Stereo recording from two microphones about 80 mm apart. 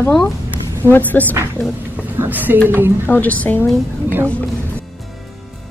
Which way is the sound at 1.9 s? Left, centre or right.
Right.